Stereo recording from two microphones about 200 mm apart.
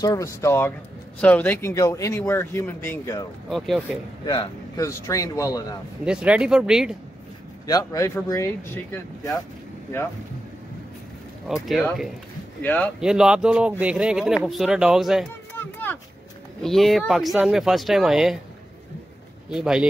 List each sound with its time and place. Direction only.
0.0 s speech: 15° left (ahead or behind)
3.4 s speech: centre (ahead or behind)
4.4 s speech: 15° left (ahead or behind)
6.0 s speech: 5° right (ahead or behind)
7.6 s speech: 15° left (ahead or behind)
11.4 s speech: centre (ahead or behind)
13.0 s speech: 5° right (ahead or behind)
15.5 s a sound: 10° left (ahead or behind)
16.6 s speech: centre (ahead or behind)
19.5 s speech: 5° right (ahead or behind)